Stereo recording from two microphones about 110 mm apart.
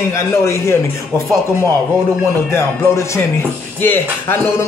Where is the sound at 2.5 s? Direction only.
25° left (ahead or behind).